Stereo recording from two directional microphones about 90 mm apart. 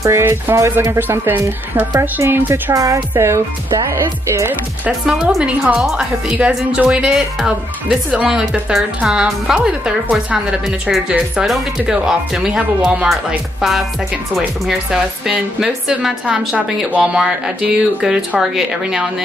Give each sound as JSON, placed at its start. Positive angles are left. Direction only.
{"t": 0.2, "sound": "speech", "side_deg": -30}
{"t": 2.7, "sound": "speech", "side_deg": -35}
{"t": 5.8, "sound": "speech", "side_deg": -5}